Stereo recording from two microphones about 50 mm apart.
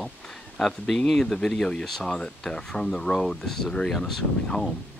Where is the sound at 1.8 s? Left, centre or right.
Centre.